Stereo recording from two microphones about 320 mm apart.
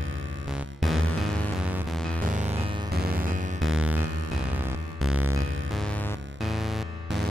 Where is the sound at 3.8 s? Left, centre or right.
Centre.